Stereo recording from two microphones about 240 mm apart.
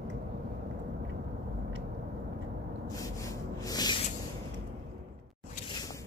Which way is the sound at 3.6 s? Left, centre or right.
Centre.